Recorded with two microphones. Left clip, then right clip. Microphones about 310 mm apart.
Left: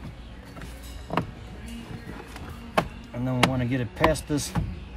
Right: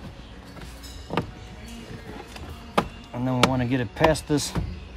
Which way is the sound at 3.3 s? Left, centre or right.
Right.